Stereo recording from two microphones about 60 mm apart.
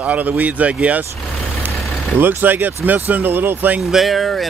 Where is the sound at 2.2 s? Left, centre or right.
Right.